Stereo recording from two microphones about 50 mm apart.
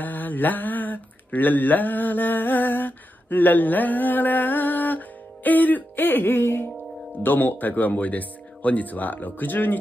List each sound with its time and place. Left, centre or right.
0.0 s mantra: left
7.2 s speech: left